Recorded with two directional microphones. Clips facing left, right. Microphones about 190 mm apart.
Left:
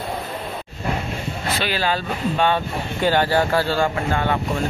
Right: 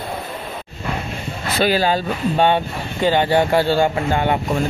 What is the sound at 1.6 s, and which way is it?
Speech, 40° right (ahead or behind).